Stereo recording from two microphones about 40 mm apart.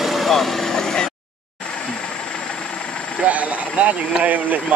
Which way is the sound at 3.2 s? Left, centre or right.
Right.